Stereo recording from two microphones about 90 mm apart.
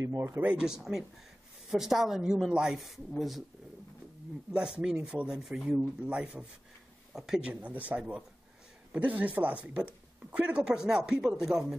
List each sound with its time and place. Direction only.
0.0 s speech: 35° right (ahead or behind)
0.4 s a woman's voice: 10° right (ahead or behind)
4.5 s speech: 10° right (ahead or behind)